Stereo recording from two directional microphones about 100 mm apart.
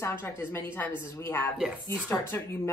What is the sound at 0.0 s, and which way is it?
Speech, 25° left (ahead or behind).